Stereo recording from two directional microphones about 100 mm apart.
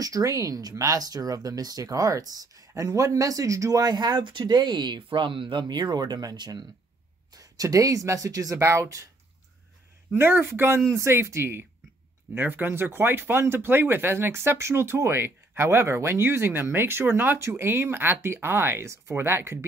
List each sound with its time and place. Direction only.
0.0 s speech: 35° right (ahead or behind)
10.1 s speech: 20° right (ahead or behind)